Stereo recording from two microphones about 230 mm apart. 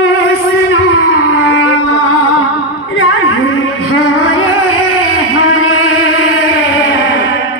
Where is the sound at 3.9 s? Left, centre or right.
Left.